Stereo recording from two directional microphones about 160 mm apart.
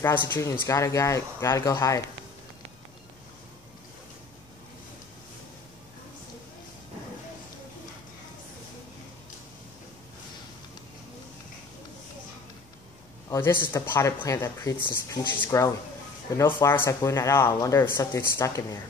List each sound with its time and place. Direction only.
0.0 s speech: 15° left (ahead or behind)
13.3 s speech: 15° left (ahead or behind)